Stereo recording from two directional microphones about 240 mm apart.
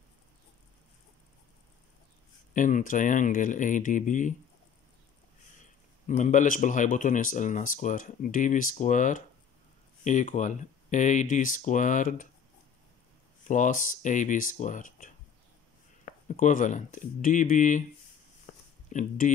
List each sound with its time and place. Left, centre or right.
2.5 s speech: left
6.0 s speech: left
13.5 s speech: left
16.3 s speech: left
18.9 s speech: left